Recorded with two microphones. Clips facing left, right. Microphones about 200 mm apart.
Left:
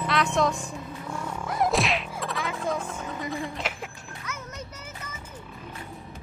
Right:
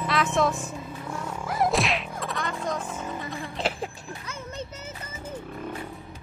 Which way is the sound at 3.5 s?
30° right (ahead or behind).